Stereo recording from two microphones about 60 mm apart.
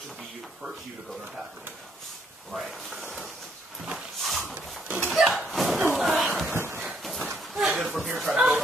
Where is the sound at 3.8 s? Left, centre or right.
Centre.